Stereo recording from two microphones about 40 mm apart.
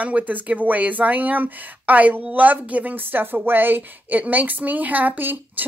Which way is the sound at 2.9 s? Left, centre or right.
Right.